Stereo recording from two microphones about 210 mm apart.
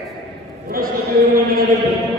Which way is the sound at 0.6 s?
45° right (ahead or behind).